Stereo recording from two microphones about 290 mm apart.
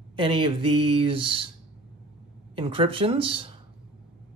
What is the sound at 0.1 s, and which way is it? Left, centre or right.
Speech, centre.